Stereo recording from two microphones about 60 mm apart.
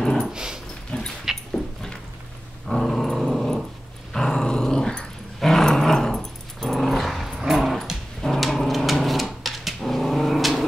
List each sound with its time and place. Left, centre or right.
0.0 s dog: centre
0.3 s dog: centre
0.9 s dog: centre
1.5 s a sound: centre
2.7 s dog: centre